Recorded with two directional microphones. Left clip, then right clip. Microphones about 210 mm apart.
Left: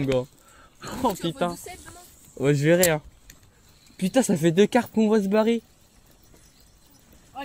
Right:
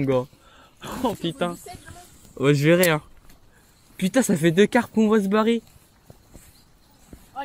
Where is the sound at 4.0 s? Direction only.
5° right (ahead or behind).